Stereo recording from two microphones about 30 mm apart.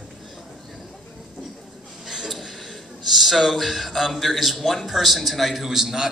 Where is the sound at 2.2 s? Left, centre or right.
Centre.